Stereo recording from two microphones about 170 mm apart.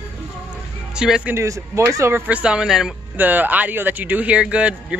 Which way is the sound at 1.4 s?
15° right (ahead or behind).